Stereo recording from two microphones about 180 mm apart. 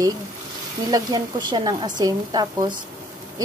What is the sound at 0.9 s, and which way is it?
Speech, 20° right (ahead or behind).